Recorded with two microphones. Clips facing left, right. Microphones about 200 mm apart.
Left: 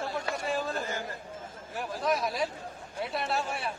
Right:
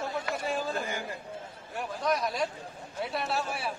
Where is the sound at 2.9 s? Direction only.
Centre (ahead or behind).